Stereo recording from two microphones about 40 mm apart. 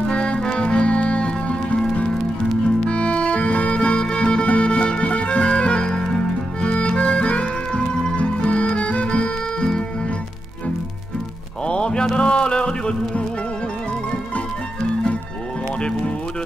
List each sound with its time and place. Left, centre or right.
0.1 s music: left
2.9 s music: left
11.6 s a sound: left